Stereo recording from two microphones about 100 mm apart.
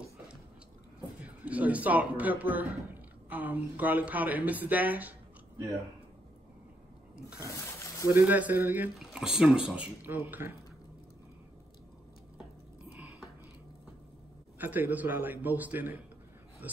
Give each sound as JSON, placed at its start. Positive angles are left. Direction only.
{"t": 1.2, "sound": "a man's voice", "side_deg": -15}
{"t": 7.3, "sound": "a sound", "side_deg": 30}
{"t": 8.1, "sound": "a man's voice", "side_deg": -20}
{"t": 8.9, "sound": "a man's voice", "side_deg": -5}
{"t": 10.0, "sound": "a man's voice", "side_deg": -20}
{"t": 14.6, "sound": "a man's voice", "side_deg": -20}